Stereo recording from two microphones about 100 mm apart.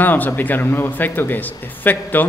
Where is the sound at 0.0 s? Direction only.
20° left (ahead or behind).